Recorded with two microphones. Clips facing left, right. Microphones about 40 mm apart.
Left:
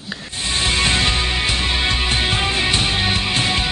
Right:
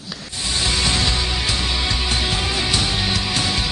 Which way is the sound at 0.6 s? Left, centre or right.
Left.